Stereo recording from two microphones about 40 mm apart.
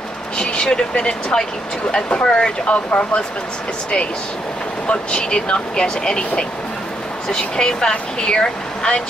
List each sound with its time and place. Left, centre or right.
0.4 s speech: centre
2.3 s speech: left
5.1 s speech: left